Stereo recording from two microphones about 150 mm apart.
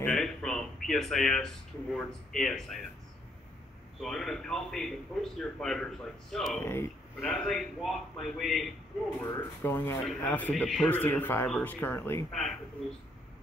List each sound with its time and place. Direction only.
0.0 s speech: 5° left (ahead or behind)
4.0 s a man's voice: 5° left (ahead or behind)
6.6 s speech: 15° left (ahead or behind)
7.2 s a man's voice: 5° left (ahead or behind)
9.2 s speech: 20° left (ahead or behind)
10.6 s a man's voice: centre (ahead or behind)
10.9 s speech: 10° left (ahead or behind)
12.3 s a man's voice: centre (ahead or behind)